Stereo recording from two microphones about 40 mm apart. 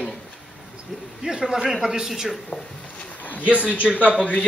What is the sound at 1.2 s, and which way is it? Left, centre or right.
Speech, centre.